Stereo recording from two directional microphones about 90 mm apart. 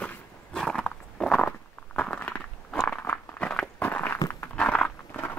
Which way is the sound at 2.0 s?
15° left (ahead or behind).